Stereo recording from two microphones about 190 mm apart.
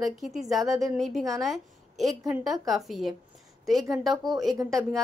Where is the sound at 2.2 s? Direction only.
20° right (ahead or behind).